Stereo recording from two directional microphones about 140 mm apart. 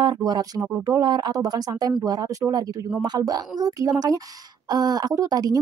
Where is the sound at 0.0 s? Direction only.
30° right (ahead or behind).